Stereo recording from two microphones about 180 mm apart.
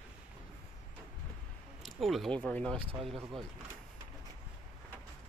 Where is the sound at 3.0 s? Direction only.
30° right (ahead or behind).